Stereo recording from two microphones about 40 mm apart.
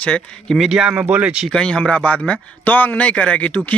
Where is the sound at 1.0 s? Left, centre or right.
Right.